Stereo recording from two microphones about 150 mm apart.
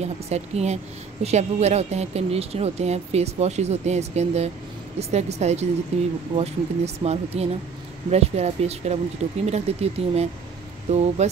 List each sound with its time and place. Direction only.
0.0 s speech: 45° right (ahead or behind)